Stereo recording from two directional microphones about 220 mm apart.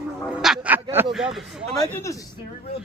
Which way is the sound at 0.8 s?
20° right (ahead or behind).